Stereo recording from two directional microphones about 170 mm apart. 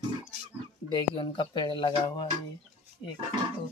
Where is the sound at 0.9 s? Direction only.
30° left (ahead or behind).